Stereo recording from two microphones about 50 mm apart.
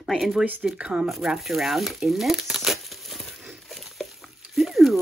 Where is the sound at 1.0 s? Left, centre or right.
Centre.